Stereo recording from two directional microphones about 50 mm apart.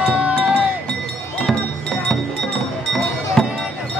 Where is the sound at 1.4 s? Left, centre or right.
Centre.